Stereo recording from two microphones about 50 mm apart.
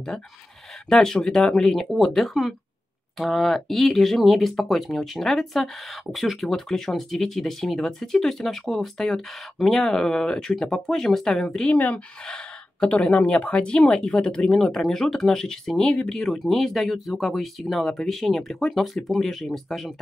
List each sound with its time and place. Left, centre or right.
0.8 s speech: centre
11.6 s speech: left; by 19.9 s centre